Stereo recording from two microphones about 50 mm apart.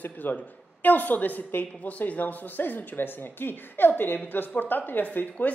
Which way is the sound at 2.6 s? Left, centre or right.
Left.